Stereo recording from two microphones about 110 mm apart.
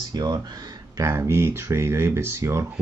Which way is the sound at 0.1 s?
35° right (ahead or behind).